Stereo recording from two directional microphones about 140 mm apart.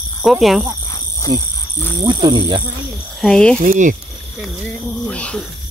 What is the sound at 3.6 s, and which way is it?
Speech, 65° right (ahead or behind).